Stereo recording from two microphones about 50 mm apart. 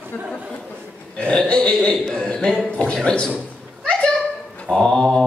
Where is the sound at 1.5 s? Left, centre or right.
Left.